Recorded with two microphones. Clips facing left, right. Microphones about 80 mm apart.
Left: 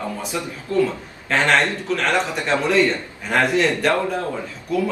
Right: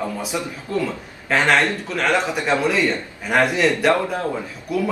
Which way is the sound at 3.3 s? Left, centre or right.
Centre.